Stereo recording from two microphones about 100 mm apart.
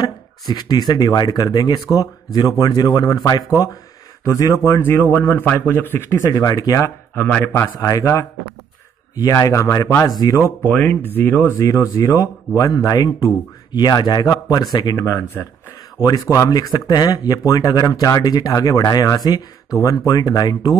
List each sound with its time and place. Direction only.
0.0 s a man's voice: 45° left (ahead or behind)
7.2 s a man's voice: 15° left (ahead or behind); by 10.4 s 40° left (ahead or behind)
10.7 s speech: 15° left (ahead or behind)
11.5 s a man's voice: 35° left (ahead or behind)
16.0 s a man's voice: 35° left (ahead or behind)